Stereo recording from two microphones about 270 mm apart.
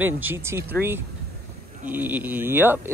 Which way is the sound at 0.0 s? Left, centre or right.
Centre.